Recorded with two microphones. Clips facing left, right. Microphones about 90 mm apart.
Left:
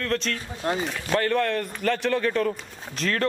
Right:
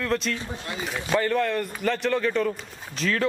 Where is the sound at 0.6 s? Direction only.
40° left (ahead or behind).